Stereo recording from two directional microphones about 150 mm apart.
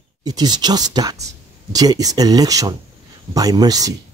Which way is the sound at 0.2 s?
25° right (ahead or behind).